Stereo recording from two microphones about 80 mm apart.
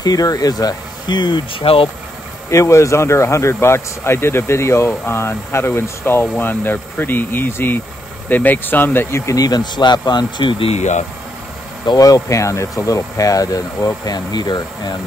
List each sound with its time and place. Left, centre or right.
0.0 s speech: left
2.5 s speech: left
9.1 s speech: left
9.4 s speech: left
11.8 s speech: left